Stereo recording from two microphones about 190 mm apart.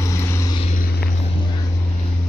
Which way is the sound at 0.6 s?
40° left (ahead or behind).